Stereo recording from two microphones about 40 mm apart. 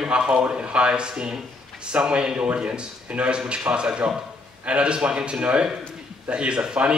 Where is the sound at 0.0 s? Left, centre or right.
Right.